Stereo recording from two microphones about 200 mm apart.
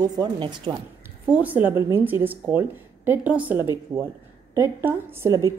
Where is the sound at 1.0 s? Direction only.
10° right (ahead or behind).